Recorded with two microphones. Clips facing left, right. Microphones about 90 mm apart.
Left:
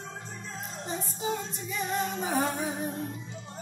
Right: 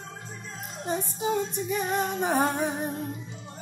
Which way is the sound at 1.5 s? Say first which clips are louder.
Right 4 dB; 50° right (ahead or behind).